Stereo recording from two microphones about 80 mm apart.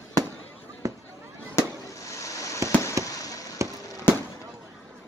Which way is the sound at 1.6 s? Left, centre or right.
Left.